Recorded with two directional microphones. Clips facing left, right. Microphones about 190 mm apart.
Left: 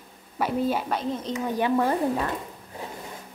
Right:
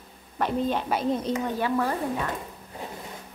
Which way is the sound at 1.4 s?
20° left (ahead or behind).